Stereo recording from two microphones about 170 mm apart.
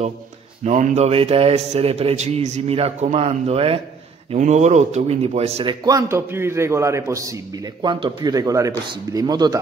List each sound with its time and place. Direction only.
0.7 s a man's voice: 45° right (ahead or behind)
5.7 s a man's voice: 20° right (ahead or behind)